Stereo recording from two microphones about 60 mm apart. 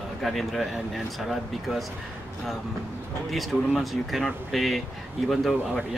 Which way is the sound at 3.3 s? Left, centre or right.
Centre.